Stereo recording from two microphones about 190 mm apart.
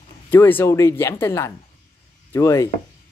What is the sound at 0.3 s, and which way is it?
Speech, 10° left (ahead or behind).